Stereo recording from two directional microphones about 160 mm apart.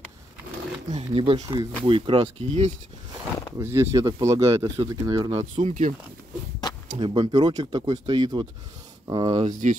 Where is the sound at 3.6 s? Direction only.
15° right (ahead or behind).